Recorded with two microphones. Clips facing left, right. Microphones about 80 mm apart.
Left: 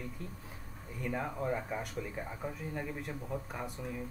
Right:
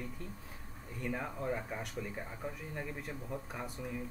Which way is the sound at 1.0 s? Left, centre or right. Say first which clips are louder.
Left 2 dB; centre.